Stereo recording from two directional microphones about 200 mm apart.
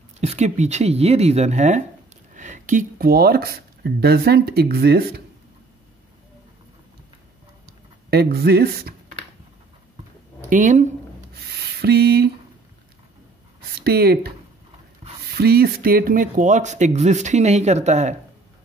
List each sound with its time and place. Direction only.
0.2 s speech: 35° right (ahead or behind); by 5.2 s 50° right (ahead or behind)
7.6 s speech: 50° right (ahead or behind)
10.5 s speech: 40° right (ahead or behind)
11.3 s a sound: 55° right (ahead or behind)
13.7 s speech: 50° right (ahead or behind)
15.3 s speech: 50° right (ahead or behind); by 18.1 s 35° right (ahead or behind)